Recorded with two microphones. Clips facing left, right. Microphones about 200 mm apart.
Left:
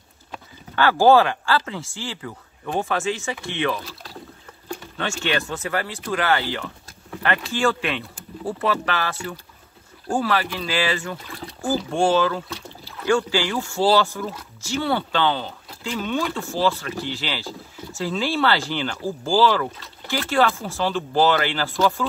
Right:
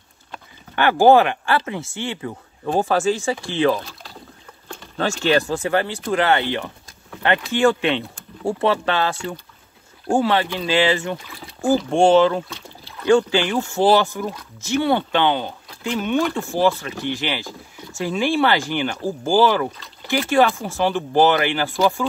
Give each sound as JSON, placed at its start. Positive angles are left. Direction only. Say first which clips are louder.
{"t": 0.7, "sound": "speech", "louder": "right 2 dB", "side_deg": -20}
{"t": 2.6, "sound": "speech", "louder": "right 5 dB", "side_deg": -35}
{"t": 5.2, "sound": "speech", "louder": "right 7 dB", "side_deg": -30}